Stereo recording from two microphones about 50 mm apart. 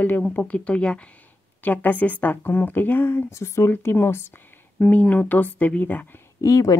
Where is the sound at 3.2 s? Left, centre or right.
Left.